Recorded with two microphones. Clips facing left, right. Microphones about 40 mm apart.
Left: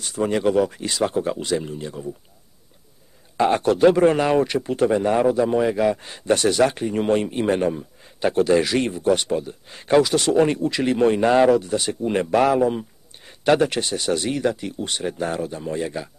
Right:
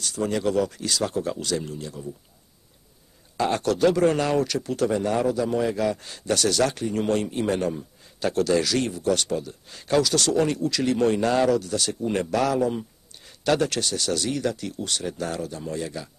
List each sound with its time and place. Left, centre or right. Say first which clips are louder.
0.0 s speech: left 4 dB; left
3.3 s speech: left 5 dB; left